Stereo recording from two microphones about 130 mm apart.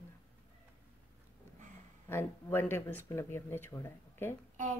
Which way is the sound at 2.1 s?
15° left (ahead or behind).